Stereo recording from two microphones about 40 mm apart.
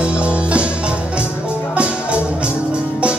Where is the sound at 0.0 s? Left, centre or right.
Right.